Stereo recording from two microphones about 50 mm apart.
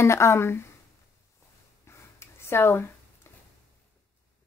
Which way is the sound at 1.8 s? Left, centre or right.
Left.